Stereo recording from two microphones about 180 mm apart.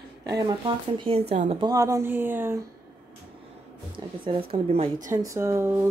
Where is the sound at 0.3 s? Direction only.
25° right (ahead or behind).